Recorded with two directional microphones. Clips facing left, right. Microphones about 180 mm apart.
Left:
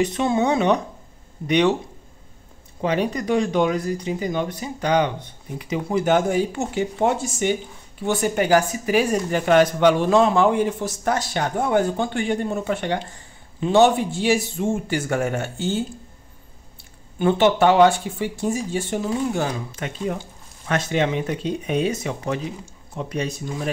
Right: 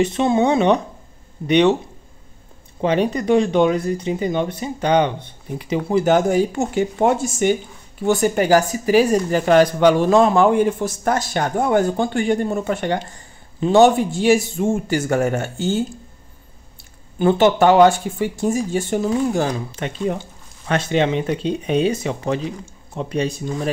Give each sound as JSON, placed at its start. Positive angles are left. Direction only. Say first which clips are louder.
{"t": 0.0, "sound": "speech", "louder": "right 3 dB", "side_deg": -25}
{"t": 2.8, "sound": "speech", "louder": "right 4 dB", "side_deg": -25}
{"t": 17.2, "sound": "speech", "louder": "right 3 dB", "side_deg": -40}
{"t": 19.7, "sound": "speech", "louder": "right 4 dB", "side_deg": -25}